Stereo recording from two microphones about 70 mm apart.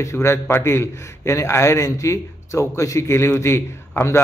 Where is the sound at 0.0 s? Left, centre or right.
Left.